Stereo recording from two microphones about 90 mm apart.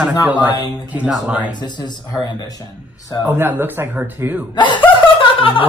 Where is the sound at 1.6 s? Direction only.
55° left (ahead or behind).